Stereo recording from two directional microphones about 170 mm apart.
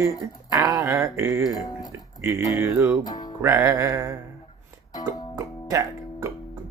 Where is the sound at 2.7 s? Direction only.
15° right (ahead or behind).